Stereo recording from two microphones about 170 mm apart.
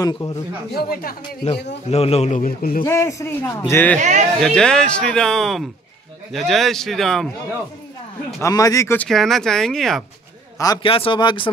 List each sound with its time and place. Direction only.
0.0 s speech: 20° left (ahead or behind)
0.7 s speech: 60° left (ahead or behind)
1.9 s speech: 35° left (ahead or behind)
2.4 s speech: 55° left (ahead or behind)
2.8 s a man's voice: 15° left (ahead or behind)
8.4 s speech: 20° left (ahead or behind); by 10.0 s centre (ahead or behind)
10.6 s speech: 20° left (ahead or behind)
10.9 s speech: 30° left (ahead or behind)